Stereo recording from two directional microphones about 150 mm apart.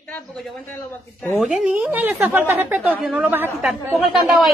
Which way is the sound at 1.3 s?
5° right (ahead or behind).